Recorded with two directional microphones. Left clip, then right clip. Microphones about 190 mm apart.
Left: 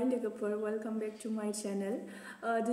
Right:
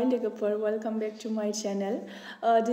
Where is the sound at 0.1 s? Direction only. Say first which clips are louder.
Right 7 dB; 20° left (ahead or behind).